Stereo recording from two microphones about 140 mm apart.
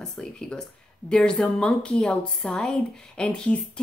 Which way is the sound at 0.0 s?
5° left (ahead or behind).